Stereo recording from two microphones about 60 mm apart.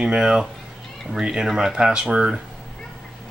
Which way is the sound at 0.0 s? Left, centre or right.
Centre.